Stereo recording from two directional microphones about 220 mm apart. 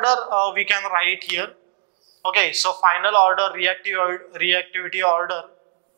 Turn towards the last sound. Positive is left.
turn(degrees=-20)  # may be behind; listen again after turning